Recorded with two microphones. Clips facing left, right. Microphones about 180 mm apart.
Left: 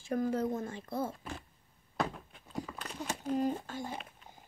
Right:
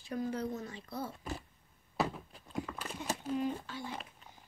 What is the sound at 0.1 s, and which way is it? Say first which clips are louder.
Speech: left 5 dB; 50° left (ahead or behind).